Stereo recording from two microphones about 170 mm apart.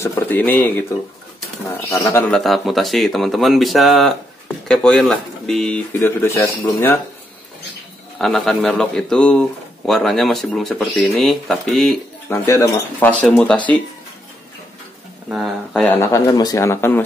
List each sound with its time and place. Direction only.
0.0 s speech: 15° left (ahead or behind)
2.3 s speech: centre (ahead or behind)
5.9 s speech: 15° left (ahead or behind)
8.2 s speech: centre (ahead or behind)
12.3 s speech: 15° left (ahead or behind)
15.2 s speech: centre (ahead or behind); by 17.0 s 15° left (ahead or behind)